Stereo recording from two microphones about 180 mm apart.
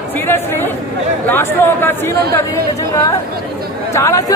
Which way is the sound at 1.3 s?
10° left (ahead or behind).